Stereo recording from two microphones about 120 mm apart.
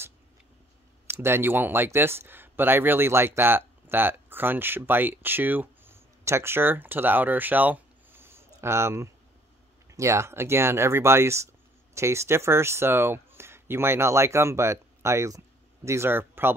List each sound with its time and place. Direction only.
1.0 s speech: 20° right (ahead or behind)